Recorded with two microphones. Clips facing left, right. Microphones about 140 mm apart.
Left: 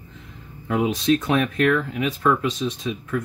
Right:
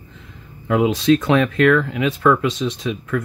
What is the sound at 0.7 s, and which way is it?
Speech, 90° right.